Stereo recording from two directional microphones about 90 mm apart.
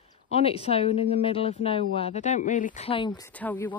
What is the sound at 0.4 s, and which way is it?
Speech, 90° left.